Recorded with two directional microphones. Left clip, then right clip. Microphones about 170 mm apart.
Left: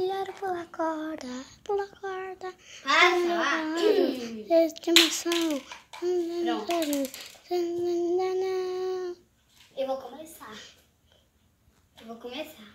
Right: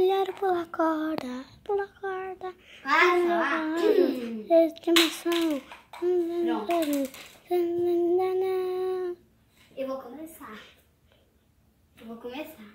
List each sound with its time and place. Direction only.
0.0 s speech: 25° right (ahead or behind)
1.2 s a child's voice: centre (ahead or behind)